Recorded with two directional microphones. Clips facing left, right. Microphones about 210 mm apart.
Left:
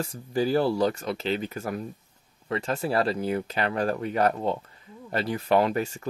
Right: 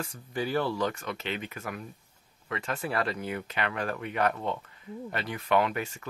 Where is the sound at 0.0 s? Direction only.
35° left (ahead or behind).